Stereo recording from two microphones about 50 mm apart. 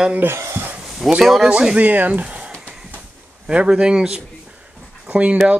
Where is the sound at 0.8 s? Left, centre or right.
Centre.